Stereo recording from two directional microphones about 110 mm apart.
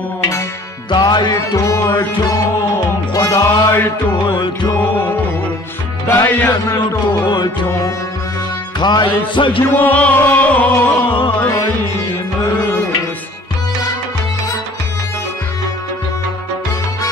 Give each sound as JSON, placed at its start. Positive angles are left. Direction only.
{"t": 0.8, "sound": "music", "side_deg": 40}
{"t": 1.9, "sound": "music", "side_deg": 45}
{"t": 3.7, "sound": "music", "side_deg": 20}
{"t": 6.0, "sound": "music", "side_deg": 15}
{"t": 7.2, "sound": "music", "side_deg": 45}
{"t": 9.6, "sound": "music", "side_deg": 15}
{"t": 11.1, "sound": "music", "side_deg": 50}